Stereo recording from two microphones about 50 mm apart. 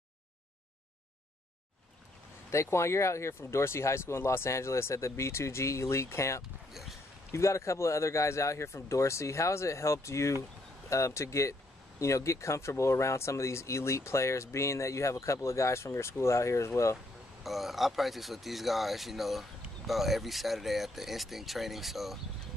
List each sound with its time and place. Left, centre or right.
2.5 s speech: left
6.7 s a sound: centre
7.3 s speech: left
10.9 s speech: left
17.4 s speech: centre